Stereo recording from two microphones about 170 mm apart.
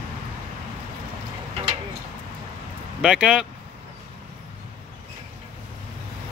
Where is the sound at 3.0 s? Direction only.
5° right (ahead or behind).